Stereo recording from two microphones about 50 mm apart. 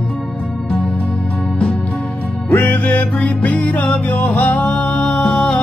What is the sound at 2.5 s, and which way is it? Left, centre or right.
Music, left.